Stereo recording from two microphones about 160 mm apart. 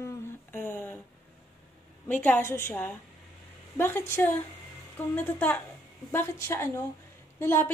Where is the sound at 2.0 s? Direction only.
10° left (ahead or behind).